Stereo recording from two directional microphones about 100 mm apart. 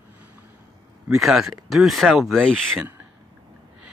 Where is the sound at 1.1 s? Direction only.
Centre (ahead or behind).